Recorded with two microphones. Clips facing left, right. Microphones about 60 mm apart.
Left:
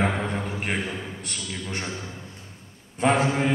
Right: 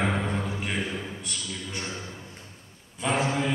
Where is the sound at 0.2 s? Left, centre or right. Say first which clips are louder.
Left 1 dB; left.